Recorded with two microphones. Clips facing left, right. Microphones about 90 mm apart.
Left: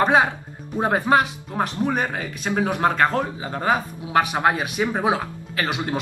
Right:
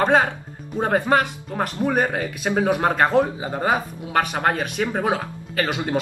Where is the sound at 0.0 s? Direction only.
15° left (ahead or behind).